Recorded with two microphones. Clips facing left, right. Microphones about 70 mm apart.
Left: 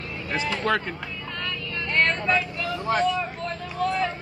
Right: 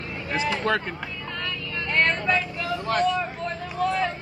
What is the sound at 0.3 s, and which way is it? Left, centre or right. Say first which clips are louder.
Speech: right 2 dB; centre.